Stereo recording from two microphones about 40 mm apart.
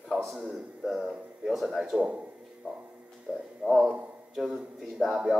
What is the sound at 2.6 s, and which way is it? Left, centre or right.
Speech, right.